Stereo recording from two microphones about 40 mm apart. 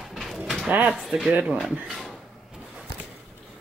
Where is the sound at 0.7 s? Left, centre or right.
Right.